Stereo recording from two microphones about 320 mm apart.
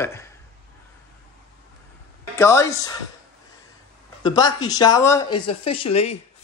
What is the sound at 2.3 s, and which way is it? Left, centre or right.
Speech, centre.